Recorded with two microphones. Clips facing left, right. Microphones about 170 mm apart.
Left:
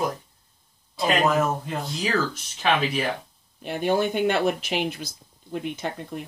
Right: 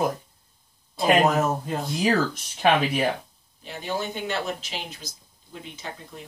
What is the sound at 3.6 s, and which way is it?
Speech, 55° left (ahead or behind).